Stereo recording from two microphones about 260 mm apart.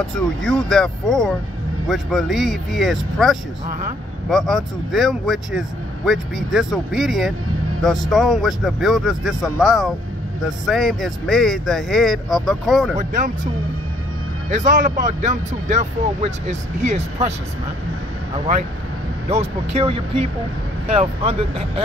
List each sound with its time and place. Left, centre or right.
0.0 s speech: centre
14.5 s speech: right
19.2 s speech: right